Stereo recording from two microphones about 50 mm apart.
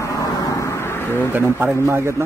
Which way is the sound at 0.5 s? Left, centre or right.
Left.